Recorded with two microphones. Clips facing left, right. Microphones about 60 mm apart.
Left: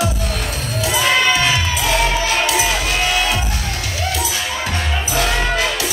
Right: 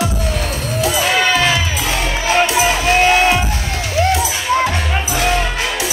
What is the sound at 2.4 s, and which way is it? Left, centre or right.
Music, right.